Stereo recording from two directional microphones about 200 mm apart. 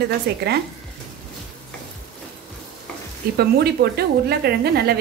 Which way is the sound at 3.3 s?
55° right (ahead or behind).